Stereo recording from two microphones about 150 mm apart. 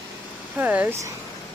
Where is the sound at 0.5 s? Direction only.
10° right (ahead or behind).